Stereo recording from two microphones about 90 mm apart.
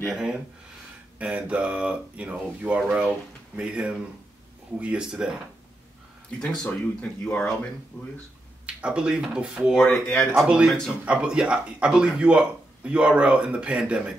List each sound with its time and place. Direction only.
0.1 s speech: 10° right (ahead or behind)
6.4 s speech: 10° left (ahead or behind)
7.9 s speech: 25° left (ahead or behind)
8.6 s speech: 10° right (ahead or behind)
9.8 s speech: 5° left (ahead or behind)
10.4 s speech: 10° right (ahead or behind)